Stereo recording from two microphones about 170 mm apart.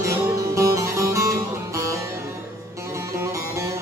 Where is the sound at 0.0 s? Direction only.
15° right (ahead or behind).